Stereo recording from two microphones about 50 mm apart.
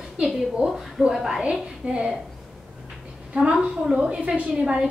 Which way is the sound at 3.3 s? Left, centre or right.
Right.